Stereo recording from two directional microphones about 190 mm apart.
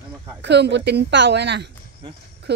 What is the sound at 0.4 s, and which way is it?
Speech, 65° right (ahead or behind).